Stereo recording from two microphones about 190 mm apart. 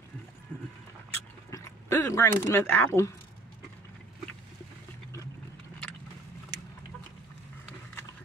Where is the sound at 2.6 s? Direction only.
10° left (ahead or behind).